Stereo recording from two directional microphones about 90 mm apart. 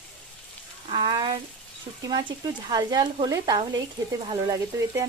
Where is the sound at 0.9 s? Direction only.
60° right (ahead or behind).